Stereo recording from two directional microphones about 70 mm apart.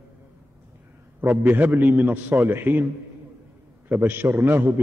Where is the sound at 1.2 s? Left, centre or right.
Right.